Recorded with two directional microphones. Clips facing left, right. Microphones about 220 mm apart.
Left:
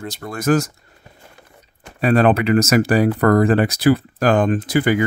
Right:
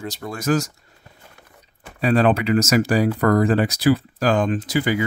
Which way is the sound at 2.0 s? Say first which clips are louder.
Left 3 dB; 55° left (ahead or behind).